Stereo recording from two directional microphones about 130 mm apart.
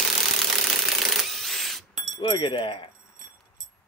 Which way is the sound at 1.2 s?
Centre (ahead or behind).